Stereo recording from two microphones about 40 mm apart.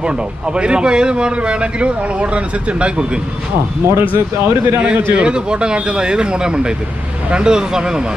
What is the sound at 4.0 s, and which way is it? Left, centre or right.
Speech, right.